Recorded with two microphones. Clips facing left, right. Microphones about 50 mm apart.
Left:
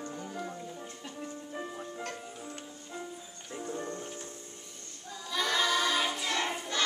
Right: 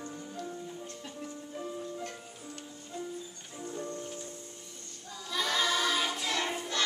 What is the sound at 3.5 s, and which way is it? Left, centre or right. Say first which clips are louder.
Music: left 1 dB; left.